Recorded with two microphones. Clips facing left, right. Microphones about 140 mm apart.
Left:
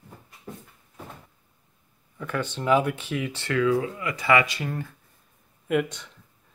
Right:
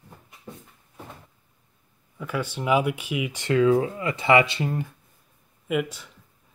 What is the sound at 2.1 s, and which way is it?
Speech, 10° right (ahead or behind).